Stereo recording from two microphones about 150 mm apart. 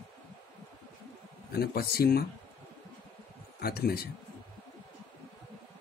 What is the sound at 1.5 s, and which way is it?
Speech, 90° left.